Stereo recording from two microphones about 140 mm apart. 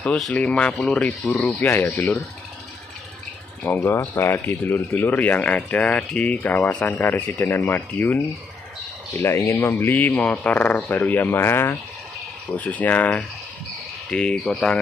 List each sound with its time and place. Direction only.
0.0 s speech: 10° left (ahead or behind)
3.6 s speech: 20° left (ahead or behind)